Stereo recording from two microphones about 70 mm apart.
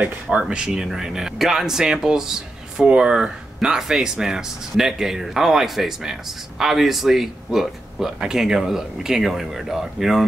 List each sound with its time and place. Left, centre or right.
0.0 s speech: centre